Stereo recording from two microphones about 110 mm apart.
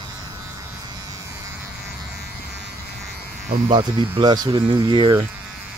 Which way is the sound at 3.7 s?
45° right (ahead or behind).